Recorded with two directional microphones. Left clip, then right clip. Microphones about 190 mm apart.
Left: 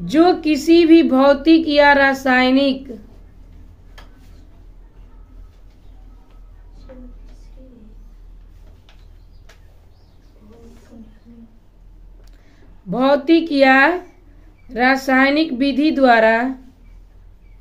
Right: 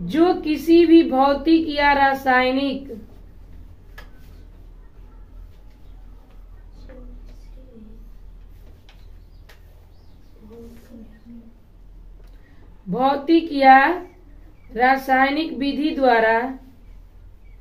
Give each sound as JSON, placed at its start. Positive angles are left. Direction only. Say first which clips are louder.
{"t": 0.0, "sound": "speech", "louder": "left 4 dB", "side_deg": 60}
{"t": 12.9, "sound": "speech", "louder": "left 3 dB", "side_deg": 60}